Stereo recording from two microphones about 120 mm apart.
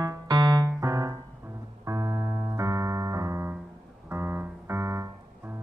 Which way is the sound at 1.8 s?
30° right (ahead or behind).